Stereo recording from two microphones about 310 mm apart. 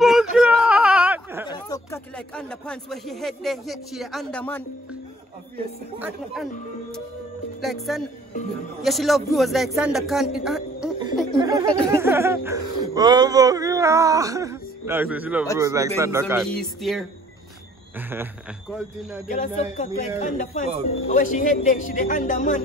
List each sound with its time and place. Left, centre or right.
0.0 s a sound: centre
1.5 s speech: centre
5.9 s speech: centre
7.6 s speech: centre
11.3 s a man's voice: centre
19.2 s speech: left